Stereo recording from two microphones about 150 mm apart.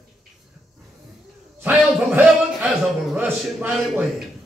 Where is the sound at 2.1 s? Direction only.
10° right (ahead or behind).